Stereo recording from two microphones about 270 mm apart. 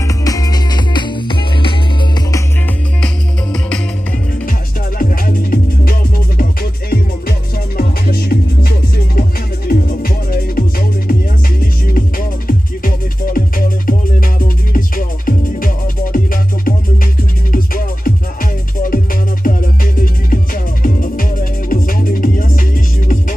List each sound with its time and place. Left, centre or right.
0.2 s music: centre
4.9 s music: left